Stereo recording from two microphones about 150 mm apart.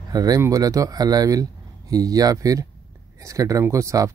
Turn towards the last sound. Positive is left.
turn(degrees=-20)  # may be behind; listen again after turning